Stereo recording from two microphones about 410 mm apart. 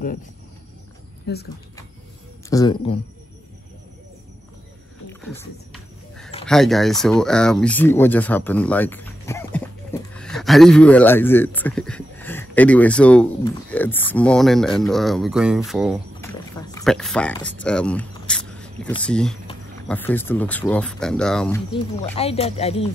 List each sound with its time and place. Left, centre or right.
1.2 s speech: left
2.5 s speech: centre
5.2 s a sound: centre
6.4 s speech: centre
22.0 s speech: centre